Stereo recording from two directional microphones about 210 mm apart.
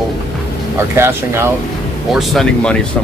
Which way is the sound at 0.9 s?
10° right (ahead or behind).